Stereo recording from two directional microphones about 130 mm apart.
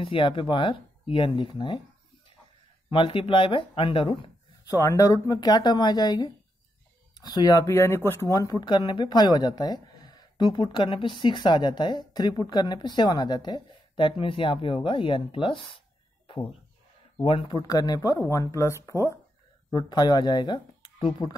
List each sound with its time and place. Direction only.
0.0 s speech: 40° left (ahead or behind)
2.9 s speech: 40° left (ahead or behind)
4.7 s speech: 25° left (ahead or behind); by 15.8 s 40° left (ahead or behind)
17.2 s speech: 40° left (ahead or behind); by 19.1 s 20° left (ahead or behind)
19.7 s speech: 35° left (ahead or behind)